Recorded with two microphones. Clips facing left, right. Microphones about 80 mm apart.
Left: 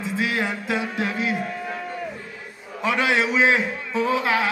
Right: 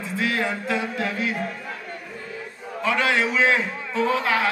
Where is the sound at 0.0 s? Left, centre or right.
Centre.